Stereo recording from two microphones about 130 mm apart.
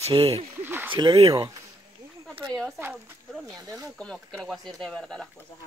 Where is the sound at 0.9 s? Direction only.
40° right (ahead or behind).